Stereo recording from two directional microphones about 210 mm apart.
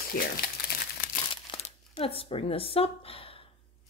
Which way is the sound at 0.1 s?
45° left (ahead or behind).